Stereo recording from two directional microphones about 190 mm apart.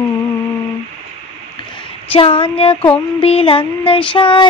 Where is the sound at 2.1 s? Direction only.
30° left (ahead or behind).